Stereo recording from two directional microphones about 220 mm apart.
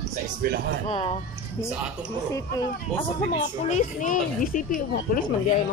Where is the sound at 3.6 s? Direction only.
35° left (ahead or behind).